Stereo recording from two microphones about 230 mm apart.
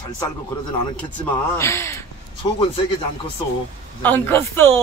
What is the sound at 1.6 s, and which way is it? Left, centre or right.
Speech, centre.